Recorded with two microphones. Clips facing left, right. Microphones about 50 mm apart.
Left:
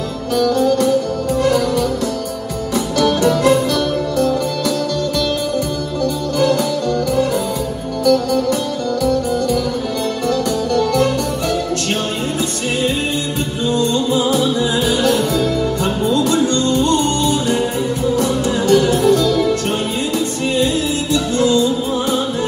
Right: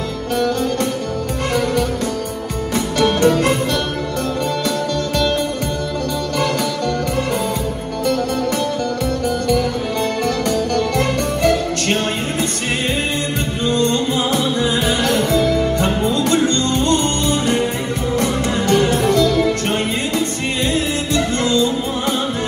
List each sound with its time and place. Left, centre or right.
0.4 s music: right
2.7 s music: right
11.0 s music: right
13.7 s music: right
20.5 s music: right